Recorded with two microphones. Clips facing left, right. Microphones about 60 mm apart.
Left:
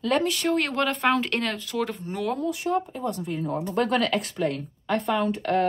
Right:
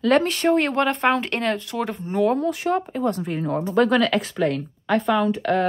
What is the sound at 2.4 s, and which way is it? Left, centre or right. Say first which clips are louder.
Speech: right 3 dB; right.